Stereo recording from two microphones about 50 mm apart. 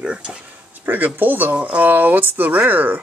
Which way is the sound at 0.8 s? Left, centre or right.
Right.